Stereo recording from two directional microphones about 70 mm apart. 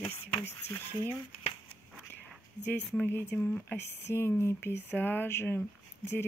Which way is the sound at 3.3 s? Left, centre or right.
Centre.